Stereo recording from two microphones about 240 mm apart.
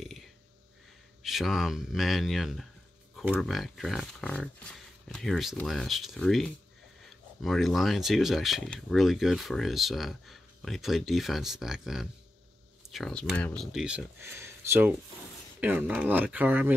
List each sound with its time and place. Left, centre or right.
1.2 s speech: centre